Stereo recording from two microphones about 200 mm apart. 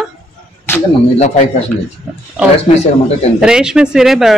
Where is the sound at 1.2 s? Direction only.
35° left (ahead or behind).